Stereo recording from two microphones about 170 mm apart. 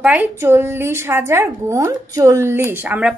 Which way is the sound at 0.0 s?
10° right (ahead or behind).